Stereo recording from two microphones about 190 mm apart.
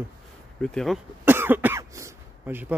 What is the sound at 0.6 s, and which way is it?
Speech, centre (ahead or behind).